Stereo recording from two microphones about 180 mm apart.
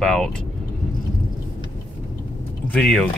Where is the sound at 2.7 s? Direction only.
5° left (ahead or behind).